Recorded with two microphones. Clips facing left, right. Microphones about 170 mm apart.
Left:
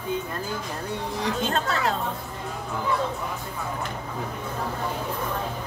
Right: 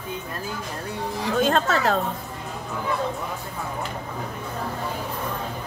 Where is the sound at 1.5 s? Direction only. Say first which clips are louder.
Right 4 dB; 80° right.